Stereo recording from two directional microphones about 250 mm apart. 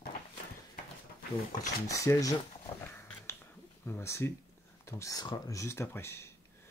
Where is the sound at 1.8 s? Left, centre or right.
Centre.